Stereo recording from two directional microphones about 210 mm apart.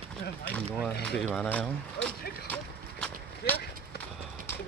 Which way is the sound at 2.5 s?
5° left (ahead or behind).